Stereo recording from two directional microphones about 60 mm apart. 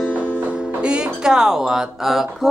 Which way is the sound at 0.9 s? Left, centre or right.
Centre.